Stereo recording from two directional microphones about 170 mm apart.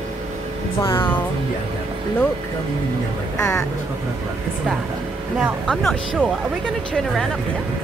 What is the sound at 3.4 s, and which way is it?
Speech, 20° left (ahead or behind).